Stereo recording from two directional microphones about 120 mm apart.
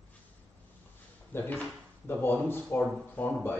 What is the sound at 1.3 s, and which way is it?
Speech, 15° left (ahead or behind).